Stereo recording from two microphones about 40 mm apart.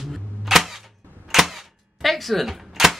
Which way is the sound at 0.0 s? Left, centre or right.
Centre.